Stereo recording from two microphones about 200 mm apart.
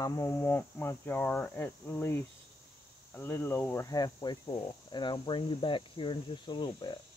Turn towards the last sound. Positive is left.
turn(degrees=25)  # may be behind; listen again after turning